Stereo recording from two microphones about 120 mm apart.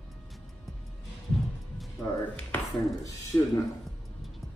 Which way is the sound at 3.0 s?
30° left (ahead or behind).